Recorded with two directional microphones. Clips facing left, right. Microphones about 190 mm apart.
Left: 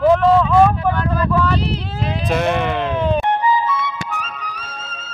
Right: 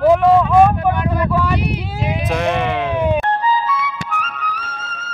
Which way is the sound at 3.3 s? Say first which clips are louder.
Left 1 dB; 20° left (ahead or behind).